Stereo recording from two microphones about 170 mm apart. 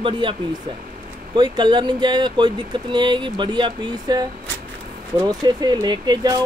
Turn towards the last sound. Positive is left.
turn(degrees=-25)  # may be behind; listen again after turning